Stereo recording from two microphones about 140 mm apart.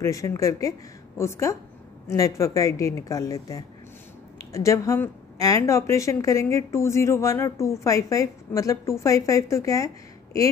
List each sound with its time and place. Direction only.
0.0 s a woman's voice: 20° left (ahead or behind)